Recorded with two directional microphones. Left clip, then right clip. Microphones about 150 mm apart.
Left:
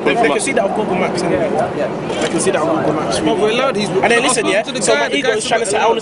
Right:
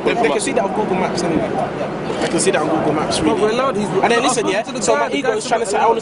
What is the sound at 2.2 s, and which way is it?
Speech, 10° right (ahead or behind).